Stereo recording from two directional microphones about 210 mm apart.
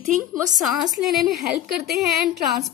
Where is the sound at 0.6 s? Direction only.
Centre (ahead or behind).